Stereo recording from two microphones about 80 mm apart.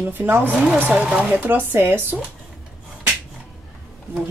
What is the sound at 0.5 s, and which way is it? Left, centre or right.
Speech, centre.